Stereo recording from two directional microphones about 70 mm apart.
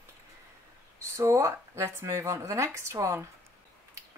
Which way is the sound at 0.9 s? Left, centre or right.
Right.